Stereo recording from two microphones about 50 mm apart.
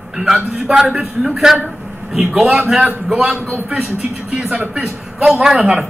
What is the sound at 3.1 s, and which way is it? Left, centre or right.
Speech, right.